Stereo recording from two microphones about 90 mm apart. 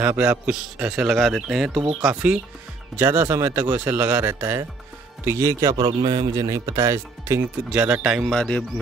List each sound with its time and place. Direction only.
0.0 s a man's voice: 20° right (ahead or behind)
3.0 s speech: 25° right (ahead or behind)
5.2 s speech: 35° right (ahead or behind)
5.9 s speech: 45° right (ahead or behind)
7.7 s a man's voice: 15° right (ahead or behind)
8.3 s speech: 10° left (ahead or behind)